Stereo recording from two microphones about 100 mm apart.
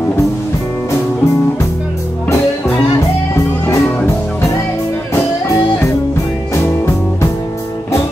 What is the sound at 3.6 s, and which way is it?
Music, 30° left (ahead or behind).